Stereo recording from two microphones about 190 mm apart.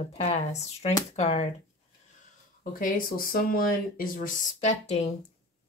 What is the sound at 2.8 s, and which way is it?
Speech, 50° left (ahead or behind).